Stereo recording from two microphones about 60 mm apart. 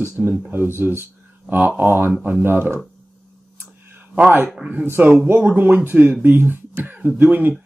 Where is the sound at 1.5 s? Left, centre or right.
Right.